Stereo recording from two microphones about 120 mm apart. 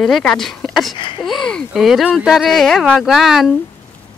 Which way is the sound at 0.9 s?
45° left (ahead or behind).